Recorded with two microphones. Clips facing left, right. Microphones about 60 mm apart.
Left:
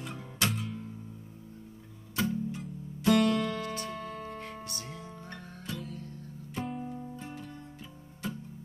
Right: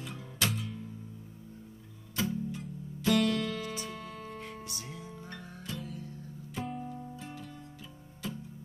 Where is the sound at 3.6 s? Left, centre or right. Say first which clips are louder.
Left 2 dB; centre.